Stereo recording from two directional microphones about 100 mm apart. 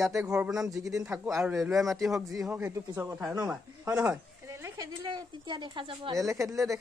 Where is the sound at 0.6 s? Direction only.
35° right (ahead or behind).